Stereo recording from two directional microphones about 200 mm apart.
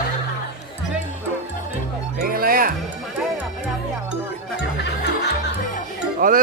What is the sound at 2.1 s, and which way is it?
Music, 45° right (ahead or behind).